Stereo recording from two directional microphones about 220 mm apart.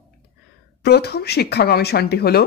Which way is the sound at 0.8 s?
45° left (ahead or behind).